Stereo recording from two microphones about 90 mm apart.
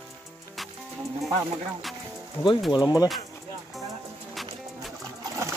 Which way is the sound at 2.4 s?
25° left (ahead or behind).